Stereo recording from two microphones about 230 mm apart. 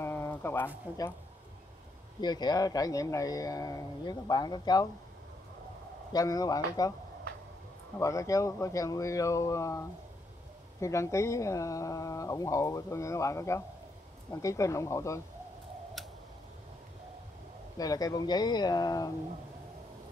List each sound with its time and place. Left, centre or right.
0.0 s a sound: centre
2.1 s speech: centre
6.1 s speech: centre
8.0 s speech: centre
17.7 s speech: centre